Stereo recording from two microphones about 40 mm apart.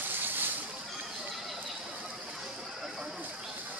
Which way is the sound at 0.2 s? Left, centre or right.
Right.